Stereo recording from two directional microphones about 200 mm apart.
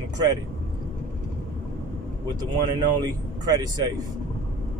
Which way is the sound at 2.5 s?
20° right (ahead or behind).